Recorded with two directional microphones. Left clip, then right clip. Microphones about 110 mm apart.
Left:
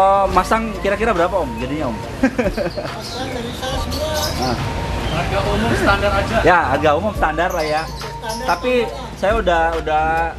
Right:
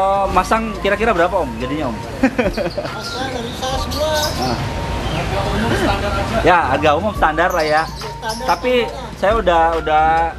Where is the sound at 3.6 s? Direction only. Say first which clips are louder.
Right 4 dB; 15° right (ahead or behind).